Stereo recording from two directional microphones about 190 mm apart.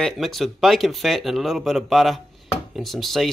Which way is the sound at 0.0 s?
Centre (ahead or behind).